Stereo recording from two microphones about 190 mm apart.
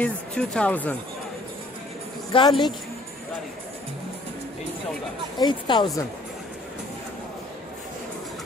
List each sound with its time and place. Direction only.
0.0 s speech: 5° left (ahead or behind)
2.3 s speech: 25° left (ahead or behind)
5.4 s speech: 25° left (ahead or behind)